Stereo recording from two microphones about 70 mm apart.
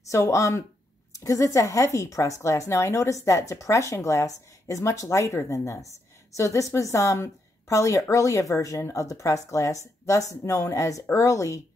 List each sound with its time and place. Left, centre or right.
0.1 s a woman's voice: left